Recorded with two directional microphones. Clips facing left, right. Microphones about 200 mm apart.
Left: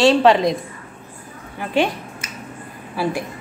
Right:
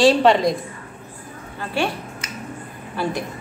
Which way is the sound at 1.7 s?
20° left (ahead or behind).